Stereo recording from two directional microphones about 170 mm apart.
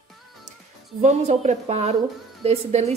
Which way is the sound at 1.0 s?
40° right (ahead or behind).